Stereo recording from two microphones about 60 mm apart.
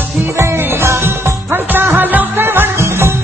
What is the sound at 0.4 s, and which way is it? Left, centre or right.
Music, right.